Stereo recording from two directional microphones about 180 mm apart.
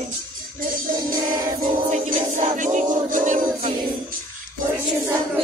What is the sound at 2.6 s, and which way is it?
Music, 40° right (ahead or behind).